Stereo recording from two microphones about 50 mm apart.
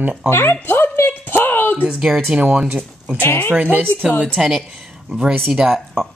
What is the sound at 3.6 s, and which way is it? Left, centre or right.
Speech, right.